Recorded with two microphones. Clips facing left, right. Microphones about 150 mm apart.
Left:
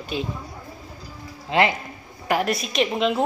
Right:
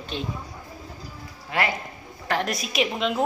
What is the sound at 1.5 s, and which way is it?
Speech, 20° left (ahead or behind).